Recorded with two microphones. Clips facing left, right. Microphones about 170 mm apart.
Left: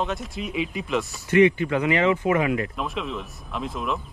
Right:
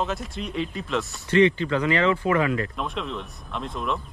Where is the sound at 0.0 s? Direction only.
Centre (ahead or behind).